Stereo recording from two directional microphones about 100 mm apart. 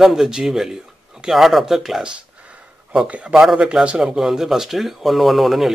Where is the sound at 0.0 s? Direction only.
5° right (ahead or behind).